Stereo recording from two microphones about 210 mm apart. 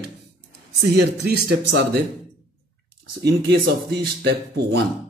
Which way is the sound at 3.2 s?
55° right (ahead or behind).